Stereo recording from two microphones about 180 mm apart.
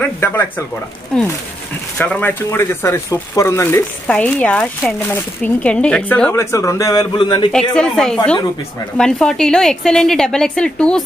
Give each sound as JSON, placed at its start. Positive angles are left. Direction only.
{"t": 0.0, "sound": "a woman's voice", "side_deg": 10}
{"t": 7.5, "sound": "a woman's voice", "side_deg": 5}